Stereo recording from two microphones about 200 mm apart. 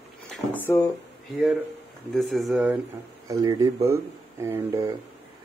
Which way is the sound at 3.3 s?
20° right (ahead or behind).